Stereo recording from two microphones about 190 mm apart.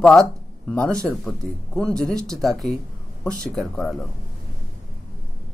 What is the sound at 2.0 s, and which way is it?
Speech, 20° right (ahead or behind).